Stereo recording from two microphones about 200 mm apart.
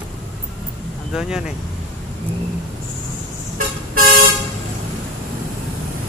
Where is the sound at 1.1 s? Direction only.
5° right (ahead or behind).